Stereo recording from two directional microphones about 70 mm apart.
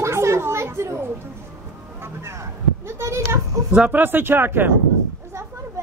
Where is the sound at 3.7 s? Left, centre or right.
Right.